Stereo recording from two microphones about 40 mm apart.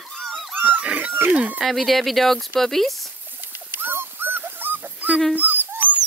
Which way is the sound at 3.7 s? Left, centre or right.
Right.